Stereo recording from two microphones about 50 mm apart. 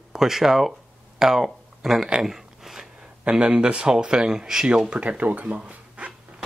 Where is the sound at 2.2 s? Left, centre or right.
Centre.